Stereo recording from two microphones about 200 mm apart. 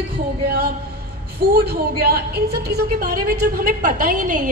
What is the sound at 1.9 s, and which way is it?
A woman's voice, 50° right (ahead or behind).